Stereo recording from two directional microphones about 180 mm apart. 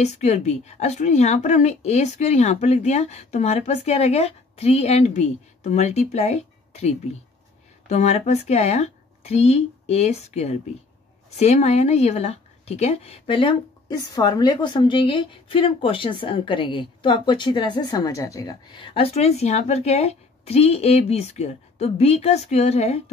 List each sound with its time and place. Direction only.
0.0 s speech: 40° left (ahead or behind)
7.9 s speech: 35° left (ahead or behind)